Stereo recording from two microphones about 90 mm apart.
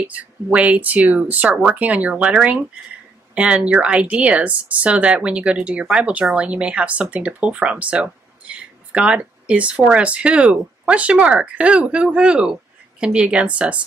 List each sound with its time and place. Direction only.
0.0 s speech: 15° right (ahead or behind)